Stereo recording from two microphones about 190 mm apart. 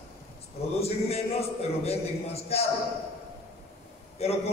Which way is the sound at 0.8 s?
35° left (ahead or behind).